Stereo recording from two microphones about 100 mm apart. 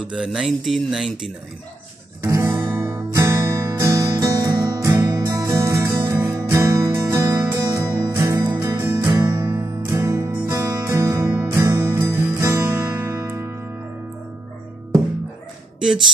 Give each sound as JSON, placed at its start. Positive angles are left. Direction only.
{"t": 0.1, "sound": "speech", "side_deg": -5}
{"t": 2.2, "sound": "guitar", "side_deg": -30}
{"t": 2.7, "sound": "music", "side_deg": -25}